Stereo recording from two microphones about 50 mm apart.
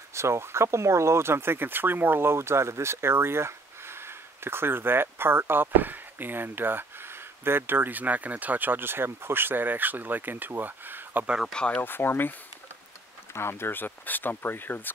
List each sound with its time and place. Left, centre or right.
0.1 s speech: right
11.5 s speech: left
11.8 s speech: left
13.3 s speech: left